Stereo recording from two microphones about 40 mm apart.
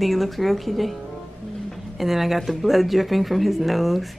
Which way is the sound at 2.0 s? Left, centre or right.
Centre.